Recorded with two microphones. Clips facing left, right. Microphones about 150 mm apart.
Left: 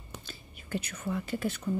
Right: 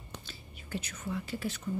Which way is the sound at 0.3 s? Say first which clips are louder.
Left 4 dB; 55° left (ahead or behind).